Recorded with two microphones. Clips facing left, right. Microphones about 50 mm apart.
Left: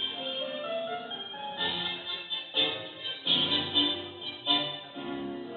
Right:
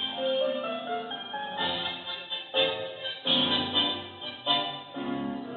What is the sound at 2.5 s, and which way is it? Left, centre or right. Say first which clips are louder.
Music: right 5 dB; right.